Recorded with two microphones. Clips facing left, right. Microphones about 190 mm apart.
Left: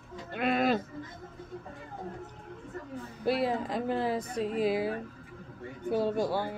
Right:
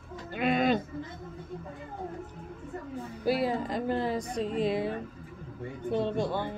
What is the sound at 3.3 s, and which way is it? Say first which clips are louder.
A woman's voice: right 1 dB; centre (ahead or behind).